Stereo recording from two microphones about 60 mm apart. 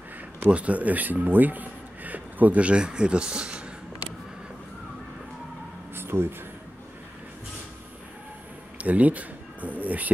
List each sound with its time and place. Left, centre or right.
0.5 s speech: right
5.9 s a sound: right
8.7 s speech: right